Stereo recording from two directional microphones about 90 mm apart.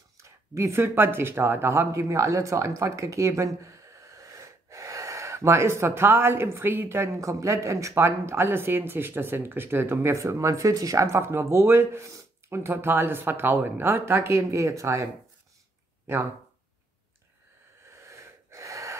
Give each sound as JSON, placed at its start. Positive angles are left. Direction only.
{"t": 0.2, "sound": "speech", "side_deg": -30}
{"t": 17.9, "sound": "wheeze", "side_deg": -35}